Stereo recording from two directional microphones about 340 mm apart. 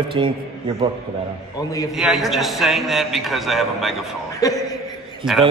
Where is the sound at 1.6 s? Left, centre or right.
Centre.